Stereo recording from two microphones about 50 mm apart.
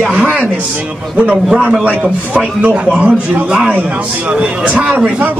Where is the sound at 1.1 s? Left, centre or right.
Right.